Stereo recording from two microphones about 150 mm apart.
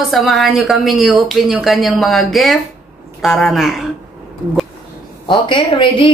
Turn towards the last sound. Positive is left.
turn(degrees=35)  # may be behind; listen again after turning